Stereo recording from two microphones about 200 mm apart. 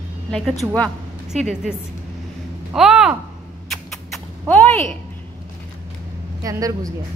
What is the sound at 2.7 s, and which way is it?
Speech, centre (ahead or behind).